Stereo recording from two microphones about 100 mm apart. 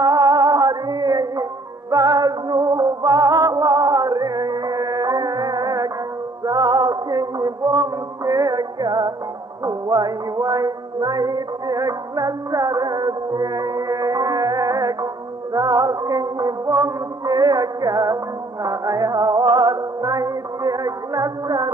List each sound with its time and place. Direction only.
0.0 s music: 40° right (ahead or behind)